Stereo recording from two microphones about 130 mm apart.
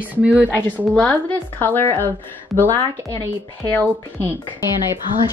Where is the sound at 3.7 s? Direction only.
15° left (ahead or behind).